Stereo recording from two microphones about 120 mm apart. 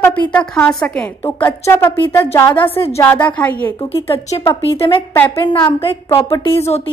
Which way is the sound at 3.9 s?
55° left (ahead or behind).